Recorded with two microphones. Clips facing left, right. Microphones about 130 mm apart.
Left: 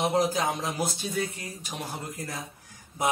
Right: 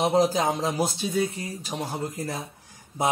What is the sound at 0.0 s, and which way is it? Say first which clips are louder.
Speech: right 4 dB; 30° right (ahead or behind).